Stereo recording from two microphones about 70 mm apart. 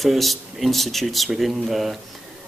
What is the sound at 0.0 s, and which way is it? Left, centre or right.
Speech, centre.